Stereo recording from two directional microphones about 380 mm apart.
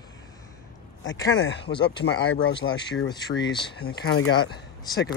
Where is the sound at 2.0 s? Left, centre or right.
Left.